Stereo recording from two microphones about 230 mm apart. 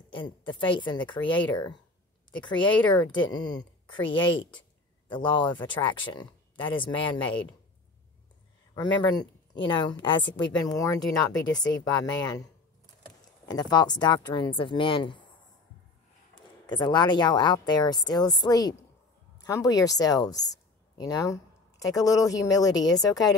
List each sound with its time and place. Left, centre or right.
0.1 s a woman's voice: left
4.1 s a woman's voice: left
5.0 s a woman's voice: centre
8.7 s a woman's voice: centre
13.5 s a woman's voice: centre
16.6 s a woman's voice: centre